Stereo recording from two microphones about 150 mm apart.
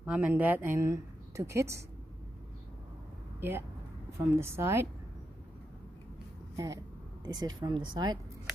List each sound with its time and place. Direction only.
0.0 s a woman's voice: 10° right (ahead or behind)
3.3 s a woman's voice: 15° right (ahead or behind)
6.5 s speech: 20° right (ahead or behind)